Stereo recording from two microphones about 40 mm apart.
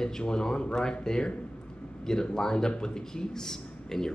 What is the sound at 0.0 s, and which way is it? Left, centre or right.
A man's voice, centre.